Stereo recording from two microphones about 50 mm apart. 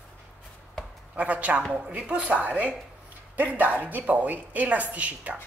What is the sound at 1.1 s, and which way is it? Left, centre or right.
A woman's voice, right.